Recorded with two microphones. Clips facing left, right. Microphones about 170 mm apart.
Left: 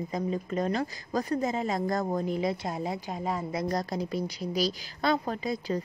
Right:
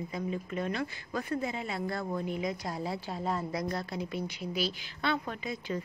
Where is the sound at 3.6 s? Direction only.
40° left (ahead or behind).